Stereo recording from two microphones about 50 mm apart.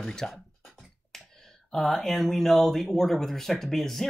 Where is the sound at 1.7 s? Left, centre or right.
Centre.